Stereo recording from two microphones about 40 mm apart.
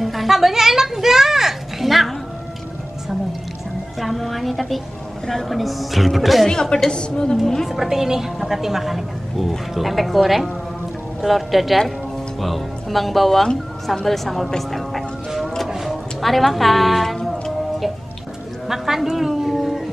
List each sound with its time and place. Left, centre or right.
0.0 s a sound: centre
4.0 s a woman's voice: centre
6.4 s a woman's voice: centre
7.6 s a woman's voice: centre
14.7 s music: centre
15.7 s a sound: centre
18.7 s dog: centre